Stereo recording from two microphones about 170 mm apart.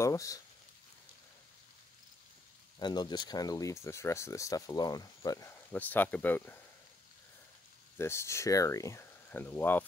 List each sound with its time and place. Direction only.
0.0 s speech: 20° left (ahead or behind)
2.8 s speech: 25° left (ahead or behind)
5.7 s speech: 10° left (ahead or behind)
8.0 s speech: 15° left (ahead or behind)